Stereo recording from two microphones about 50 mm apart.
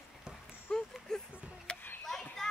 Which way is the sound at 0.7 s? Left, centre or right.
Centre.